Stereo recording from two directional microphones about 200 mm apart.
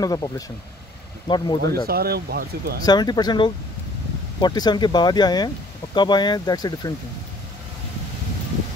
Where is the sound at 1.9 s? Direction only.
50° right (ahead or behind).